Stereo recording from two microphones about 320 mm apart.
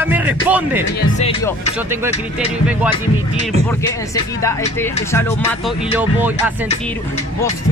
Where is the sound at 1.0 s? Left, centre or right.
Left.